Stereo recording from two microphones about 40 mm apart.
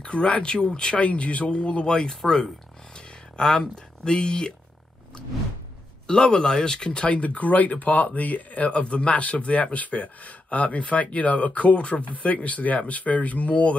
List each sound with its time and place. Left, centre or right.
0.0 s speech: left
1.0 s speech: left
6.0 s speech: centre; by 13.7 s left